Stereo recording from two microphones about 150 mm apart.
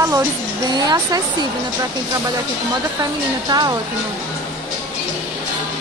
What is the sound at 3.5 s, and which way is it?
Speech, 25° right (ahead or behind).